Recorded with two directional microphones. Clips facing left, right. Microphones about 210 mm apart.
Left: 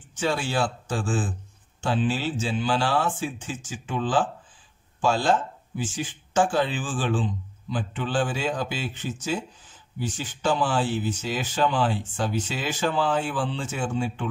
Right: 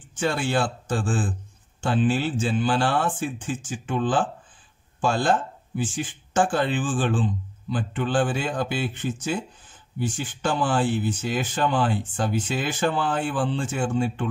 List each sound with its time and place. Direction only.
0.2 s speech: 55° right (ahead or behind)